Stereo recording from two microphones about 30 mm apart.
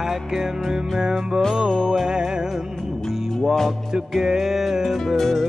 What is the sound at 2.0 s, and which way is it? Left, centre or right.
Music, right.